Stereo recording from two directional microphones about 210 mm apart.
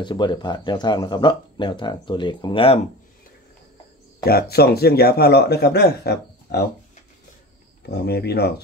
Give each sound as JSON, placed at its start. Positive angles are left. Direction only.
{"t": 0.0, "sound": "speech", "side_deg": 20}
{"t": 4.2, "sound": "a man's voice", "side_deg": 45}
{"t": 7.9, "sound": "a man's voice", "side_deg": 50}